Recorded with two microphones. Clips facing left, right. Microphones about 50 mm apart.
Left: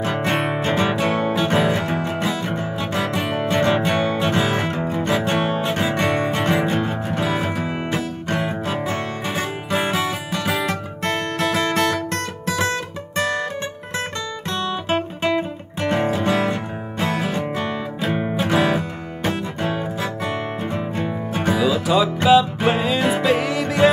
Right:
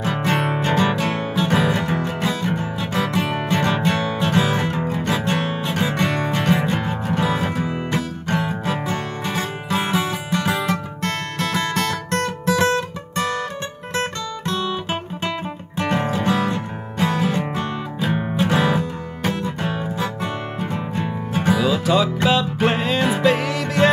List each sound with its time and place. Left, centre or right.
0.0 s music: centre
5.9 s music: left
6.3 s music: centre
8.9 s music: centre
11.0 s music: centre
14.7 s music: centre